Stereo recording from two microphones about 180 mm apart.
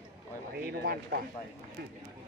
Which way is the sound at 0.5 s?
60° right (ahead or behind).